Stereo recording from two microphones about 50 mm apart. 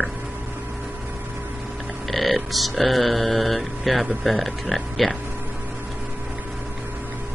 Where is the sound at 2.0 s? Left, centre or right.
Centre.